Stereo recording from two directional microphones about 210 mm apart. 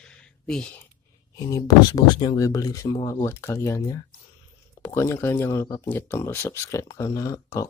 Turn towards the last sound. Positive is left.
turn(degrees=15)  # may be behind; listen again after turning